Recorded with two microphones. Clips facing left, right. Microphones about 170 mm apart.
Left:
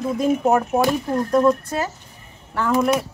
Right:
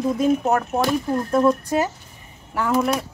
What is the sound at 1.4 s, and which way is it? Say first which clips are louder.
Speech: even; 15° right (ahead or behind).